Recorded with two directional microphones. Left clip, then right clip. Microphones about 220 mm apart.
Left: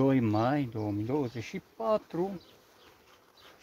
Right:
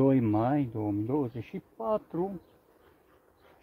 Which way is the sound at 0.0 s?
20° right (ahead or behind).